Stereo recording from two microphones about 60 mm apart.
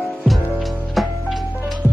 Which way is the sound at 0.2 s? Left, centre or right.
Centre.